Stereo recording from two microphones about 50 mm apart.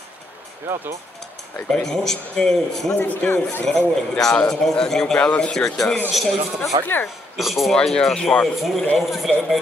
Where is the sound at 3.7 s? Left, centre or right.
Centre.